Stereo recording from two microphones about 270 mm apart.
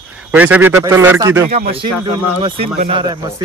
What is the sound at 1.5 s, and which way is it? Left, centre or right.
Speech, right.